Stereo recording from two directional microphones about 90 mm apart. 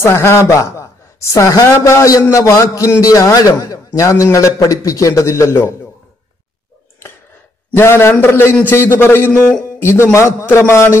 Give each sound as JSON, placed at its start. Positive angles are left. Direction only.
{"t": 0.0, "sound": "a man's voice", "side_deg": 30}
{"t": 7.7, "sound": "a man's voice", "side_deg": 25}